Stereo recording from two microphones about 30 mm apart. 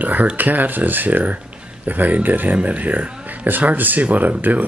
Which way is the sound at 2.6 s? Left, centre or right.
Right.